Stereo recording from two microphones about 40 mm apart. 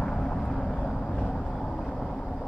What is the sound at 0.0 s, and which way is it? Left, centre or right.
Vehicle, centre.